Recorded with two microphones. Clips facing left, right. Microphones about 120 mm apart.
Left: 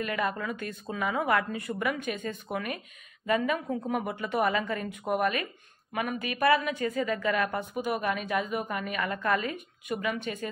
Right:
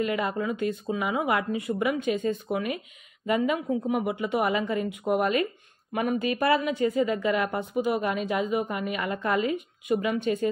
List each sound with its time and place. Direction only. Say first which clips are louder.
0.0 s a woman's voice: right 4 dB; 20° right (ahead or behind)